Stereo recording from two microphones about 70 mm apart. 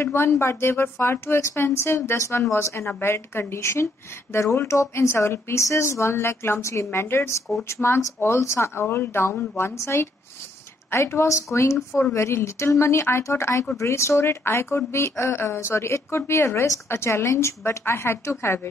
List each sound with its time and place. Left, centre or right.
0.0 s speech: left